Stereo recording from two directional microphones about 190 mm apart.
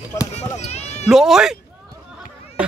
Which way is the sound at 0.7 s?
35° left (ahead or behind).